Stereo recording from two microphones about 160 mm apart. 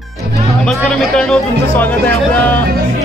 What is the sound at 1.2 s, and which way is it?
Music, 10° left (ahead or behind).